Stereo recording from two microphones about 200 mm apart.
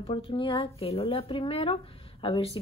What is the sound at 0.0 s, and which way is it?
A woman's voice, 25° left (ahead or behind).